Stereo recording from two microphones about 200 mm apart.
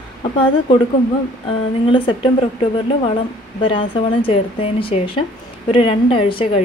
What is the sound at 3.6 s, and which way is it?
Speech, 25° left (ahead or behind).